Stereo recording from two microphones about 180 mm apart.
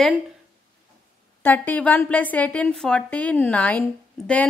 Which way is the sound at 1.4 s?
10° left (ahead or behind).